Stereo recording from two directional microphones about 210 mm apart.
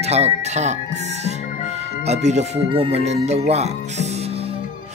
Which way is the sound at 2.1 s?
30° right (ahead or behind).